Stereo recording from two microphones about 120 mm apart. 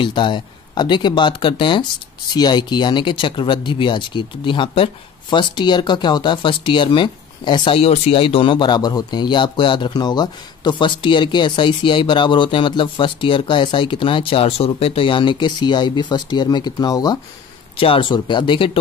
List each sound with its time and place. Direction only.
0.0 s speech: 40° left (ahead or behind)
17.7 s speech: 50° left (ahead or behind)